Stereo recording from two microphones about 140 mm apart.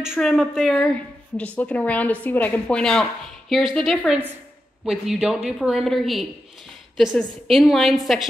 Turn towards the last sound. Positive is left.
turn(degrees=0)  # may be behind; listen again after turning